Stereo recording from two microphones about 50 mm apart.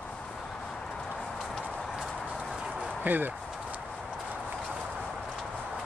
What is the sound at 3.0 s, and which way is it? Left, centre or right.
Speech, right.